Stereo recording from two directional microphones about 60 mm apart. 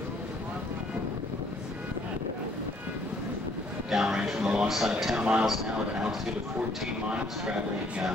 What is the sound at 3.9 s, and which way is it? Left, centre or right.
A man's voice, centre.